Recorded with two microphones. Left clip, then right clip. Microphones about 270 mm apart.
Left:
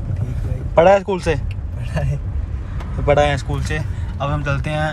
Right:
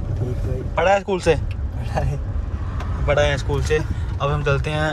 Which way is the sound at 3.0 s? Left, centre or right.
Centre.